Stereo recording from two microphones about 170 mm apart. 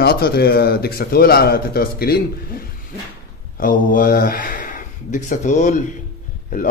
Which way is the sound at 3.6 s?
55° left (ahead or behind).